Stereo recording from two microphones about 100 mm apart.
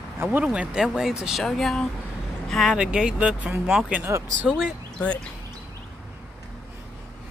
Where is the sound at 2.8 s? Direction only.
10° right (ahead or behind).